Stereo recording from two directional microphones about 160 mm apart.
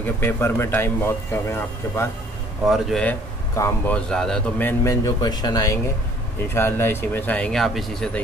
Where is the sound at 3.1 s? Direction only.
15° left (ahead or behind).